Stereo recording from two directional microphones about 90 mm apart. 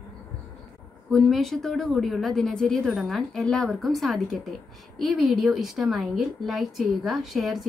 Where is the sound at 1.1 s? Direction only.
Centre (ahead or behind).